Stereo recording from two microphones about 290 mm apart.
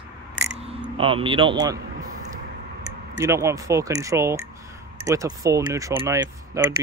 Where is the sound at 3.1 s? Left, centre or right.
Centre.